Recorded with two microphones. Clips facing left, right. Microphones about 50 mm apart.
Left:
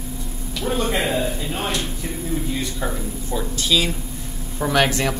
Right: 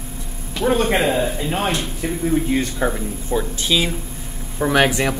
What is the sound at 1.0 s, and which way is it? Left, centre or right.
Speech, right.